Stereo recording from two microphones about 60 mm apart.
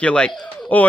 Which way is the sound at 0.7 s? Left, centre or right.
Left.